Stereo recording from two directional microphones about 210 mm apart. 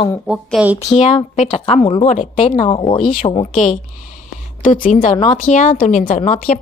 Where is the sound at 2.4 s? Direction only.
25° left (ahead or behind).